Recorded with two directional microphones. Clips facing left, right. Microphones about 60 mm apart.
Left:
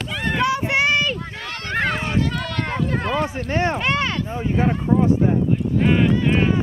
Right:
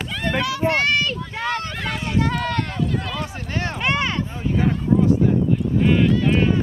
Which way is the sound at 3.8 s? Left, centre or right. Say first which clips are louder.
Even; centre.